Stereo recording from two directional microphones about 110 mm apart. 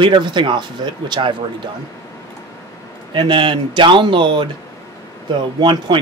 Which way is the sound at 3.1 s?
45° right (ahead or behind).